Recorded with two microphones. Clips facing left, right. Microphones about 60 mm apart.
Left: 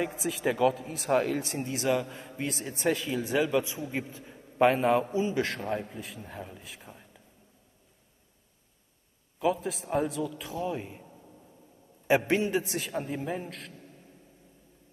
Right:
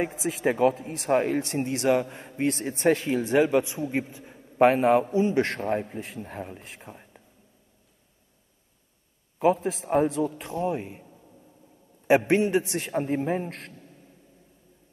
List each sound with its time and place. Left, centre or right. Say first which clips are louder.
0.4 s a man's voice: right 3 dB; right
0.7 s speech: right 3 dB; right
1.1 s a man's voice: right 3 dB; right
1.4 s a man's voice: right 5 dB; right
4.1 s a man's voice: right 1 dB; centre
5.2 s a man's voice: right 5 dB; right
6.8 s a sound: right 4 dB; right
9.4 s a man's voice: right 6 dB; right
10.7 s a man's voice: right 4 dB; right
12.3 s a man's voice: right 5 dB; right
13.5 s a man's voice: right 3 dB; right